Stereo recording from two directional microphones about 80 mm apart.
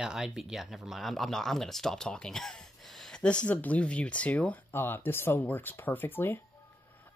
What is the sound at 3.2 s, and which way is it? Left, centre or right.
Speech, centre.